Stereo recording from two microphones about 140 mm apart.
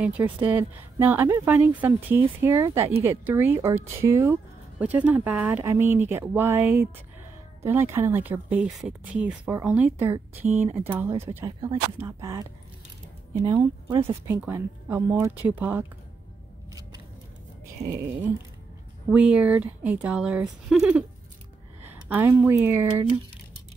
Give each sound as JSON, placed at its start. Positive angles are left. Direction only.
{"t": 0.0, "sound": "speech", "side_deg": -10}
{"t": 13.5, "sound": "speech", "side_deg": -30}
{"t": 14.2, "sound": "speech", "side_deg": -15}
{"t": 19.0, "sound": "speech", "side_deg": -10}